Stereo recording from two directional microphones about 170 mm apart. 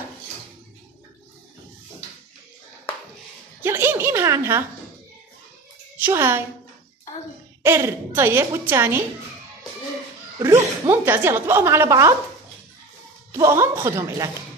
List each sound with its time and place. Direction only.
3.6 s a woman's voice: 15° right (ahead or behind)
5.9 s a child's voice: 15° right (ahead or behind)
7.6 s a woman's voice: 15° right (ahead or behind)
10.4 s a woman's voice: 15° right (ahead or behind)
13.3 s a woman's voice: 15° right (ahead or behind)